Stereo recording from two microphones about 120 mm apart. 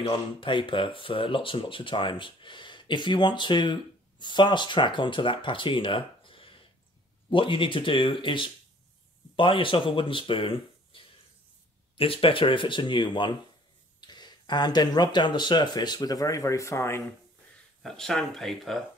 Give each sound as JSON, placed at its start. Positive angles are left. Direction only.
{"t": 0.1, "sound": "speech", "side_deg": 45}
{"t": 17.8, "sound": "speech", "side_deg": 5}